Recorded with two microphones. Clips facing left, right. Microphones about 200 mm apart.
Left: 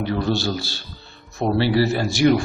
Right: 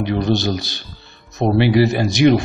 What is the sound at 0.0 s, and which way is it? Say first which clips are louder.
A man's voice: right 4 dB; 20° right (ahead or behind).